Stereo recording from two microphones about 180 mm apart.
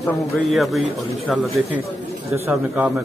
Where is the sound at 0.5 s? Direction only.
Centre (ahead or behind).